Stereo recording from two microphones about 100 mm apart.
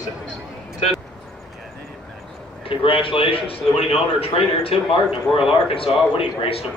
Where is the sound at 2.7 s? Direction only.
60° left (ahead or behind).